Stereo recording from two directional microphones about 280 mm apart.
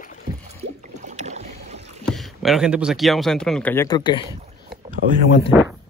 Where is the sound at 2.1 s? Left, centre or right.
Centre.